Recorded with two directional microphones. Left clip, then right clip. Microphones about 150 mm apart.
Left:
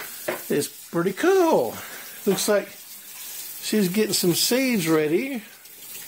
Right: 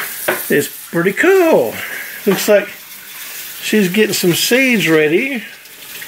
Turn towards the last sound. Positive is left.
turn(degrees=20)  # may be behind; listen again after turning